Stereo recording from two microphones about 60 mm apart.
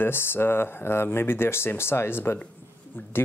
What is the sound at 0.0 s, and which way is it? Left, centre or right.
Speech, left.